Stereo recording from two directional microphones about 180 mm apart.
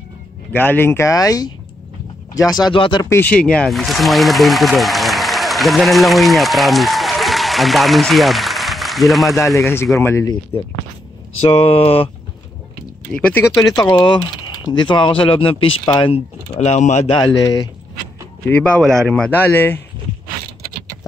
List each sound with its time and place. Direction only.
0.5 s speech: 10° left (ahead or behind)
9.6 s speech: 15° left (ahead or behind)
11.4 s speech: 30° left (ahead or behind)
13.1 s speech: 10° left (ahead or behind); by 17.2 s 35° left (ahead or behind)
17.2 s speech: 20° left (ahead or behind)
18.4 s speech: 10° left (ahead or behind)